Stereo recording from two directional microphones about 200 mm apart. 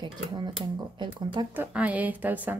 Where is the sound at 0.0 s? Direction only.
25° right (ahead or behind).